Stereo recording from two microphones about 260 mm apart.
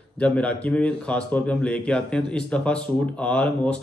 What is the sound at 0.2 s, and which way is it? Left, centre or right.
Speech, centre.